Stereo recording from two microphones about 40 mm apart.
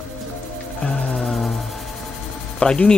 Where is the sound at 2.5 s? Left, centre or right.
Left.